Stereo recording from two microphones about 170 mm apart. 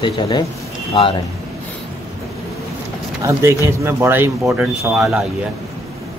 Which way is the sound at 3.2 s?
15° right (ahead or behind).